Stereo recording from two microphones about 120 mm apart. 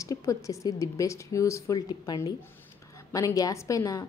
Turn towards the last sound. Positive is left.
turn(degrees=30)  # may be behind; listen again after turning